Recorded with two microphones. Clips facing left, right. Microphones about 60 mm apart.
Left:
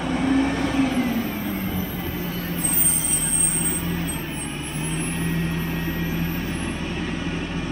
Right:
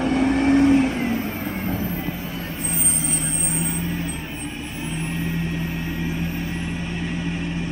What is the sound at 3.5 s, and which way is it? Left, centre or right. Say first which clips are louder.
Vehicle: right 1 dB; centre.